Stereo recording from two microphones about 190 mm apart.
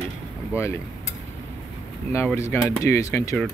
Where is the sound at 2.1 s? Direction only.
15° left (ahead or behind).